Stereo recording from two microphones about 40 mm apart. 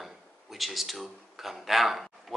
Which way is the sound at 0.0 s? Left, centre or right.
Centre.